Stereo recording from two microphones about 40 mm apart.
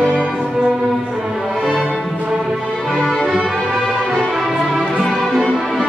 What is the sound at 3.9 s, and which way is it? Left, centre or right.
Music, centre.